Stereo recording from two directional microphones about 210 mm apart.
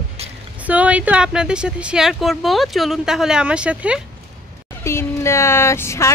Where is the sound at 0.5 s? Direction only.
5° right (ahead or behind).